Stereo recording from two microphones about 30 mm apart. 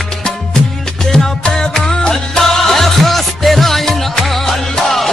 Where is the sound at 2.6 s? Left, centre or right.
Centre.